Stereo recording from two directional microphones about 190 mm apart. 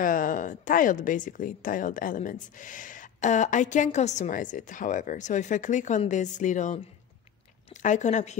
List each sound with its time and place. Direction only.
0.0 s a woman's voice: 45° left (ahead or behind)